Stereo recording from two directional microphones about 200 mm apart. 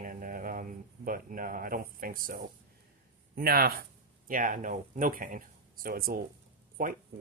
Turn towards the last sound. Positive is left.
turn(degrees=-45)  # may be behind; listen again after turning